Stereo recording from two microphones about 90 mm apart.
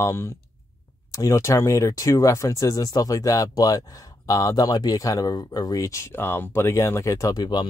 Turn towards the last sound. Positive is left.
turn(degrees=50)  # may be behind; listen again after turning